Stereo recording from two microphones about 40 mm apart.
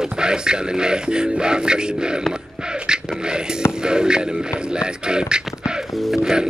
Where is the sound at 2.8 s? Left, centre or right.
Right.